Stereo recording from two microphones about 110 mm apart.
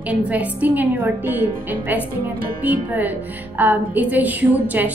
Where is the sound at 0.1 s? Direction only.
15° right (ahead or behind).